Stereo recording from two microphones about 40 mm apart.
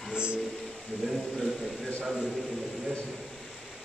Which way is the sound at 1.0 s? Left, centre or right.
Centre.